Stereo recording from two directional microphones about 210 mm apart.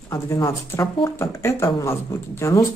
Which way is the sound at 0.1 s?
15° left (ahead or behind).